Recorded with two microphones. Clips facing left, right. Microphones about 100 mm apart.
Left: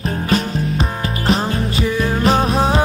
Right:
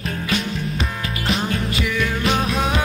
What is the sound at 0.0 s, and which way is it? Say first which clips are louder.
Music: left 5 dB; 35° left (ahead or behind).